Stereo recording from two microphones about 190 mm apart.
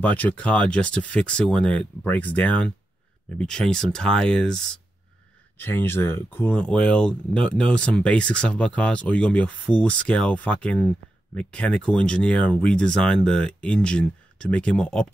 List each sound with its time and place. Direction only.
0.0 s speech: 10° left (ahead or behind)
5.6 s speech: 10° left (ahead or behind)